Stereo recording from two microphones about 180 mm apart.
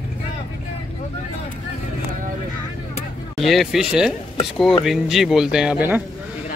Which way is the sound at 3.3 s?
Centre (ahead or behind).